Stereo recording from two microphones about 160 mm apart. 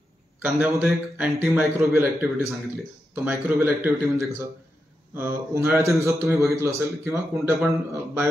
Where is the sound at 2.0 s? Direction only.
15° right (ahead or behind).